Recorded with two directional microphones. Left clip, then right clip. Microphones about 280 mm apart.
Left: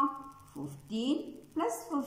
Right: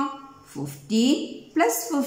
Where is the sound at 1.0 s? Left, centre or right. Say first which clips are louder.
Right 11 dB; right.